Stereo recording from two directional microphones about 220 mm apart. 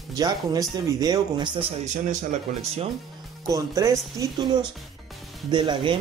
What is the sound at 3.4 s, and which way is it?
A man's voice, 15° right (ahead or behind).